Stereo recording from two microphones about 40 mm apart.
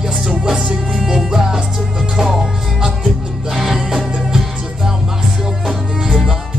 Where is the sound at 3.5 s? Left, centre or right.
Centre.